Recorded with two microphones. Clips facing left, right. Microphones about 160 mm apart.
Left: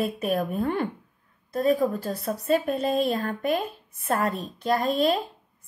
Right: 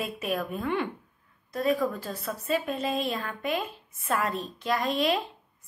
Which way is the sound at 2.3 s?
45° left (ahead or behind).